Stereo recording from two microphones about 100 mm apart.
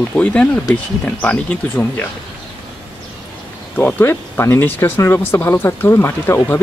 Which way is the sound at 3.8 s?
20° left (ahead or behind).